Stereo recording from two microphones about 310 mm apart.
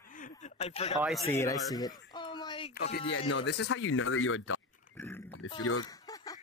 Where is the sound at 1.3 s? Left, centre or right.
Centre.